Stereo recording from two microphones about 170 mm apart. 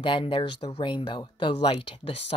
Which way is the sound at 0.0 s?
30° left (ahead or behind).